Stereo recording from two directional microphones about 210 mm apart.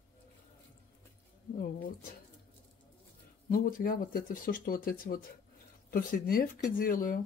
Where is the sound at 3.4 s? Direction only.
45° left (ahead or behind).